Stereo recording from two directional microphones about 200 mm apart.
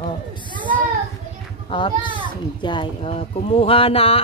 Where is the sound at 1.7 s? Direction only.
25° left (ahead or behind).